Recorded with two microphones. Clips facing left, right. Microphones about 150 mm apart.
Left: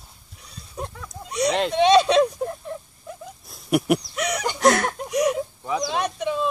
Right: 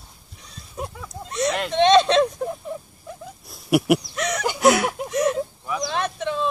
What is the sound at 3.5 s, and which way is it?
Dog, 5° right (ahead or behind).